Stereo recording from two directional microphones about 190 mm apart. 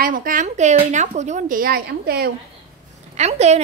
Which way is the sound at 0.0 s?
45° right (ahead or behind).